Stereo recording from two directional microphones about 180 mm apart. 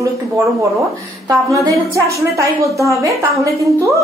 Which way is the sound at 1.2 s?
15° right (ahead or behind).